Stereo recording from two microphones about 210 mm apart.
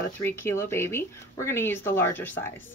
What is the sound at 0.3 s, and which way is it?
Speech, 10° left (ahead or behind).